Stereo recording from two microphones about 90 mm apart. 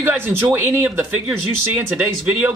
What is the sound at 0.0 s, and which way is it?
Speech, 25° right (ahead or behind).